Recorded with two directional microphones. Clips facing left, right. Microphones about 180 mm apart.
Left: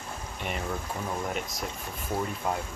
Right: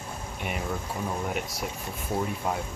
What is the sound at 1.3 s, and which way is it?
Speech, 10° right (ahead or behind).